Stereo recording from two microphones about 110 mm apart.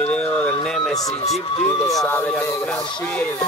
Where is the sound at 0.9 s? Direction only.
35° left (ahead or behind).